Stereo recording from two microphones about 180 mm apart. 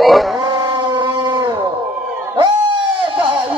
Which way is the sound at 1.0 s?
25° right (ahead or behind).